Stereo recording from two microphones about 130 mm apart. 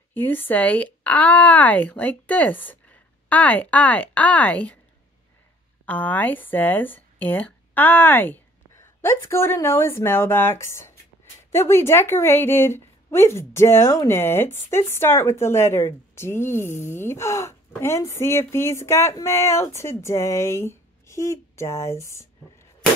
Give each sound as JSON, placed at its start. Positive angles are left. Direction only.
{"t": 0.1, "sound": "speech", "side_deg": 15}
{"t": 5.9, "sound": "a woman's voice", "side_deg": 10}